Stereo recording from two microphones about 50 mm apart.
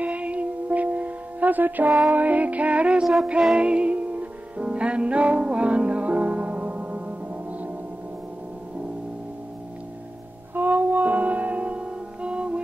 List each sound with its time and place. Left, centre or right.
0.0 s music: right
3.0 s music: centre
3.5 s music: right
10.5 s music: right